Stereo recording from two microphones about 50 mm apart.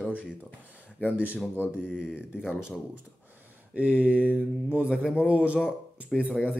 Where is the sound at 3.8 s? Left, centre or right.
Right.